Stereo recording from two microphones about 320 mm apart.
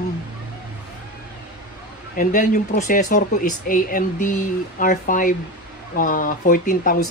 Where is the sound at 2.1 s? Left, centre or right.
Left.